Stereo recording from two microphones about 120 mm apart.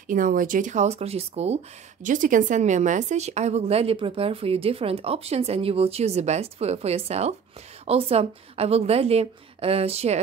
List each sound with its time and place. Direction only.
0.1 s a woman's voice: 90° right; by 1.6 s 60° right (ahead or behind)
2.0 s a woman's voice: 90° right; by 10.2 s 60° right (ahead or behind)